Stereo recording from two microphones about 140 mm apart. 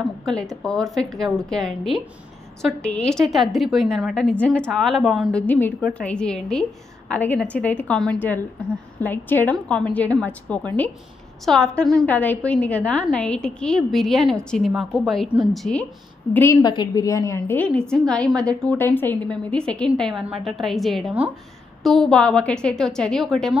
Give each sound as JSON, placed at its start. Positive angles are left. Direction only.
{"t": 0.2, "sound": "a woman's voice", "side_deg": 5}
{"t": 5.5, "sound": "a woman's voice", "side_deg": 10}
{"t": 16.6, "sound": "a woman's voice", "side_deg": 30}